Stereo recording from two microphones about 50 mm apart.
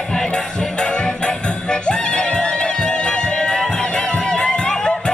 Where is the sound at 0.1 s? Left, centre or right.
Centre.